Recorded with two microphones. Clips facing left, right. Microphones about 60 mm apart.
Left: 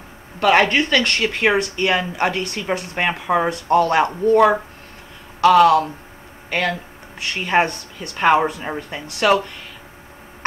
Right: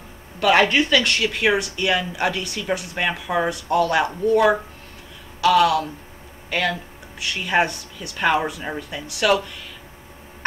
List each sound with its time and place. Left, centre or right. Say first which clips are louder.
0.4 s speech: left 2 dB; left
0.7 s speech: left 1 dB; left
3.1 s speech: left 3 dB; left